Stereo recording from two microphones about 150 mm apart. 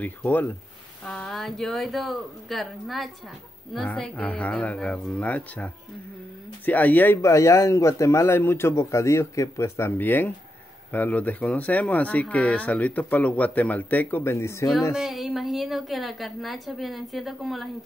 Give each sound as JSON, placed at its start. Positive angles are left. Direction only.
{"t": 0.0, "sound": "a woman's voice", "side_deg": 10}
{"t": 15.0, "sound": "a woman's voice", "side_deg": 0}